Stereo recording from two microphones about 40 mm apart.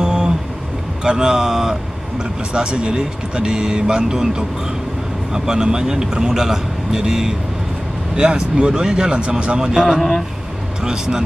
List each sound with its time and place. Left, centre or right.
0.0 s a sound: right
1.0 s speech: centre
2.5 s a man's voice: right
9.9 s a man's voice: centre
10.8 s speech: centre